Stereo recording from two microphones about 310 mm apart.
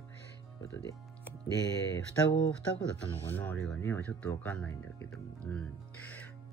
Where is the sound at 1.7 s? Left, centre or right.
Centre.